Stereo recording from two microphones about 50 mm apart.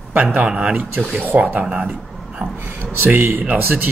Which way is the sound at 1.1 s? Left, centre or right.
Right.